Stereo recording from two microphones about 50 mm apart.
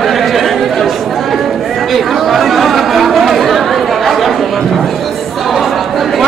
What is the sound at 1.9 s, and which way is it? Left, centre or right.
Chatter, centre.